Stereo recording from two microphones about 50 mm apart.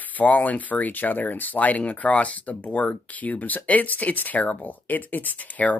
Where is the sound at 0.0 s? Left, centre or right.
Left.